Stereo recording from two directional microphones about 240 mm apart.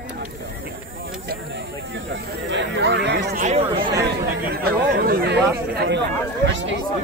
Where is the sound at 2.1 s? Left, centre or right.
Right.